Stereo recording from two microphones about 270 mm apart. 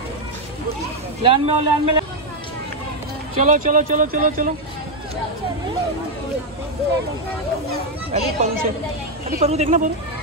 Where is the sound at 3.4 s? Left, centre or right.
Right.